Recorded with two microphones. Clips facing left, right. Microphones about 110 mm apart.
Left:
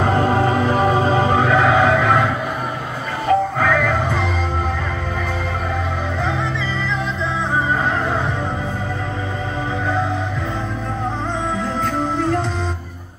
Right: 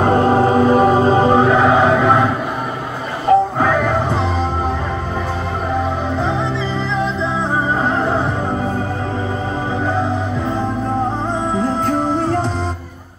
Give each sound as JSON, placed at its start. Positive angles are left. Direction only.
{"t": 0.0, "sound": "music", "side_deg": -25}
{"t": 3.5, "sound": "music", "side_deg": -20}